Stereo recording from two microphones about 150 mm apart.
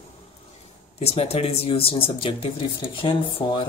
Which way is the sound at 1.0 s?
45° left (ahead or behind).